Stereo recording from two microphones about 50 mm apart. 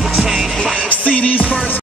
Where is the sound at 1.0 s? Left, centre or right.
Left.